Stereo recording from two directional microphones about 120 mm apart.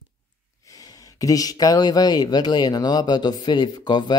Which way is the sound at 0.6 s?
30° left (ahead or behind).